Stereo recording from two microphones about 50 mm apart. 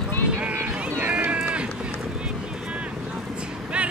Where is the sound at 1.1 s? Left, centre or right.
Right.